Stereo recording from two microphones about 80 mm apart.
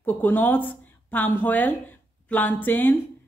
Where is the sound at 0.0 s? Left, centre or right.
Left.